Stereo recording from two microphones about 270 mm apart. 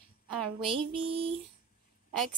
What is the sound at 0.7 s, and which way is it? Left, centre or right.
Music, centre.